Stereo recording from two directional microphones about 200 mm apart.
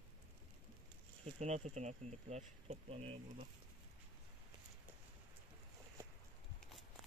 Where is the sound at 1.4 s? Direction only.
35° right (ahead or behind).